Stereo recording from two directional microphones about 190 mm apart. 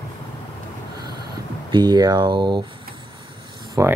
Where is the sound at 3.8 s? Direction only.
15° right (ahead or behind).